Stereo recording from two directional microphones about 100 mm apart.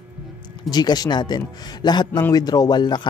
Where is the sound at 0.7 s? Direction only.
45° left (ahead or behind).